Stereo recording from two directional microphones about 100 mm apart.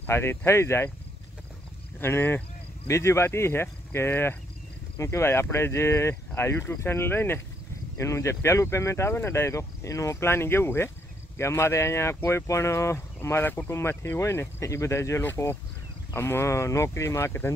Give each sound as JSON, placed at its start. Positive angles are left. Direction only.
{"t": 0.0, "sound": "speech", "side_deg": 25}
{"t": 2.0, "sound": "speech", "side_deg": 25}